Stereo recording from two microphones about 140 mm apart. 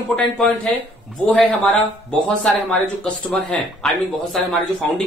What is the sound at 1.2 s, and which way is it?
Speech, 5° left (ahead or behind).